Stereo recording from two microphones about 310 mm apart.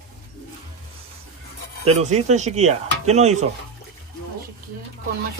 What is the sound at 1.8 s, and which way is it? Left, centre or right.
Speech, right.